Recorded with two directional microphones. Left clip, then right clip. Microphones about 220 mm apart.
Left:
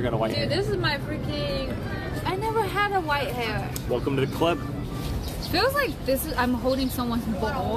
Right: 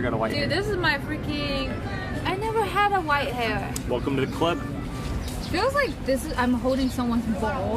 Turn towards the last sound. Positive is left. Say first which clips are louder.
# right 1 dB
turn(degrees=15)  # may be behind; listen again after turning